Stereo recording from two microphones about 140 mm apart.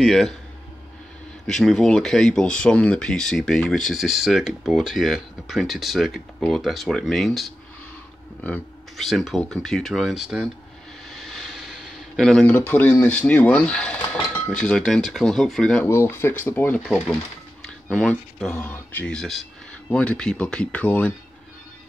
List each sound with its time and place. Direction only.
0.0 s speech: centre (ahead or behind)
1.5 s speech: 5° left (ahead or behind)
8.9 s speech: centre (ahead or behind)
15.8 s speech: 15° left (ahead or behind)
16.8 s speech: 5° left (ahead or behind)